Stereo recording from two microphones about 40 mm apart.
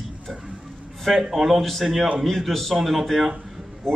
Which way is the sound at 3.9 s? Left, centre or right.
Centre.